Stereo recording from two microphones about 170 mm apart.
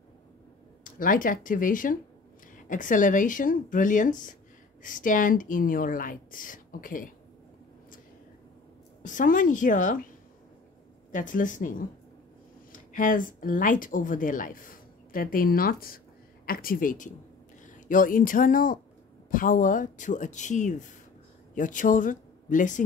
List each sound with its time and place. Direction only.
0.8 s speech: 55° left (ahead or behind)
9.0 s speech: 50° left (ahead or behind)
11.1 s speech: 50° left (ahead or behind)